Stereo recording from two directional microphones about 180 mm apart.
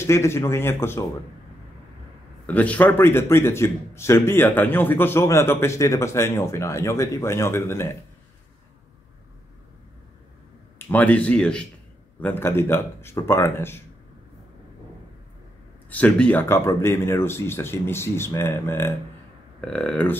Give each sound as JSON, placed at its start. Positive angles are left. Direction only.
{"t": 0.0, "sound": "a man's voice", "side_deg": 15}
{"t": 2.4, "sound": "a man's voice", "side_deg": 10}
{"t": 10.9, "sound": "a man's voice", "side_deg": 10}
{"t": 15.9, "sound": "a man's voice", "side_deg": 10}